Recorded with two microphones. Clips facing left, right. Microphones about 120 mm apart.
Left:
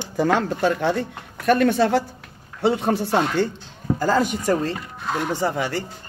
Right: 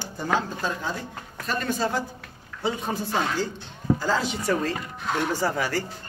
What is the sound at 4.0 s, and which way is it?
Speech, 50° left (ahead or behind).